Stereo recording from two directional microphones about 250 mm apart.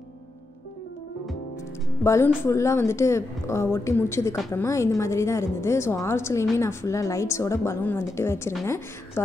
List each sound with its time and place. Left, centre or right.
2.0 s a woman's voice: centre